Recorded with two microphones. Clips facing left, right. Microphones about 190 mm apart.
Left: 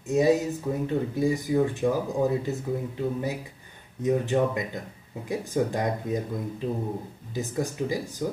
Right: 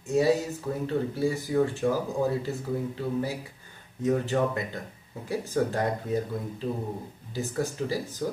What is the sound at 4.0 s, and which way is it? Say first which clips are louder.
Speech: left 2 dB; 15° left (ahead or behind).